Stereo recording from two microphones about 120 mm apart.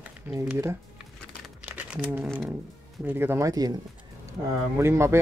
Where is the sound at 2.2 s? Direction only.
Centre (ahead or behind).